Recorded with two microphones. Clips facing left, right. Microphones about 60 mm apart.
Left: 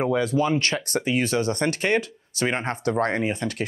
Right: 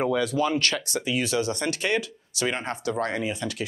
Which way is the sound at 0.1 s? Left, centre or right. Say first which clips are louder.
Left 2 dB; left.